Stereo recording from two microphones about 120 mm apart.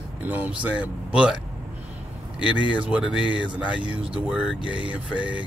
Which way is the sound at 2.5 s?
45° left (ahead or behind).